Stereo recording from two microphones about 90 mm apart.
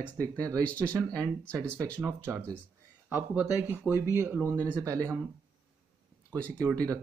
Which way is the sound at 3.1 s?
15° right (ahead or behind).